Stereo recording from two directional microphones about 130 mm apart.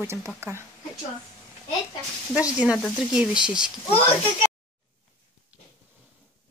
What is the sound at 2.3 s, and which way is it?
Speech, 10° right (ahead or behind).